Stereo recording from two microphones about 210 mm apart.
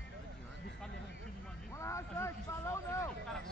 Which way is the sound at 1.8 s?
15° left (ahead or behind).